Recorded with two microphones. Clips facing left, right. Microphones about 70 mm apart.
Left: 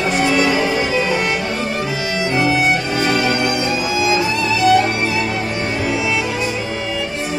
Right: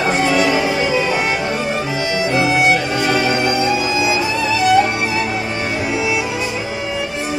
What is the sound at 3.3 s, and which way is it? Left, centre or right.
Music, centre.